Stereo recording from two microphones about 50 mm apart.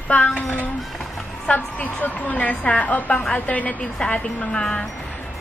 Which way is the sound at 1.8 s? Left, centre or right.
Left.